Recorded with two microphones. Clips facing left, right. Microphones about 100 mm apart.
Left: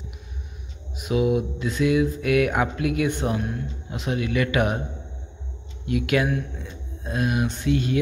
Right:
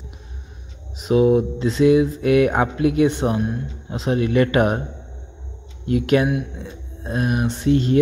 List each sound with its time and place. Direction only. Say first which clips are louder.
0.9 s speech: right 6 dB; 35° right (ahead or behind)
5.9 s speech: right 5 dB; 30° right (ahead or behind)